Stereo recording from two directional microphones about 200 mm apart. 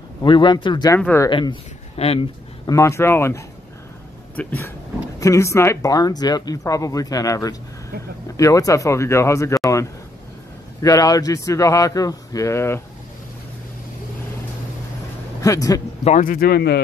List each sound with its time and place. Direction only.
0.2 s speech: 25° left (ahead or behind)
1.3 s speech: 25° left (ahead or behind)
2.6 s speech: 15° left (ahead or behind)
10.8 s speech: 15° left (ahead or behind)
15.4 s speech: 15° left (ahead or behind)
16.0 s speech: 35° left (ahead or behind); by 16.8 s 55° left (ahead or behind)